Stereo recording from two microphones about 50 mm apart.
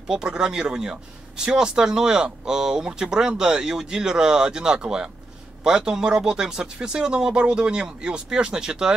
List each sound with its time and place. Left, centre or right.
0.1 s speech: centre